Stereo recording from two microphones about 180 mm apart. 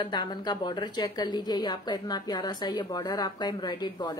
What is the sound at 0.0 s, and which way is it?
A woman's voice, 25° left (ahead or behind).